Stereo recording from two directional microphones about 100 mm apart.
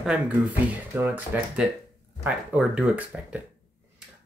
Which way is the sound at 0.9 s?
20° right (ahead or behind).